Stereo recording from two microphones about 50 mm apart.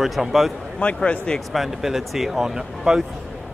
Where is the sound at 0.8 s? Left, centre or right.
Left.